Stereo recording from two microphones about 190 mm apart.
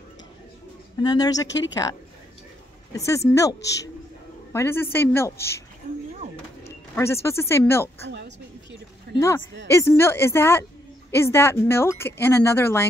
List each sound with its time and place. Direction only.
1.0 s speech: 20° left (ahead or behind)
3.3 s a woman's voice: 15° left (ahead or behind)
7.0 s speech: 15° left (ahead or behind)
9.1 s speech: 55° right (ahead or behind)
9.7 s speech: 15° left (ahead or behind)